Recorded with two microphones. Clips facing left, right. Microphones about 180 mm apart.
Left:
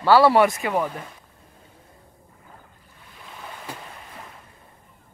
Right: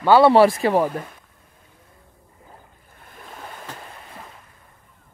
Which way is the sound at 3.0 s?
50° right (ahead or behind).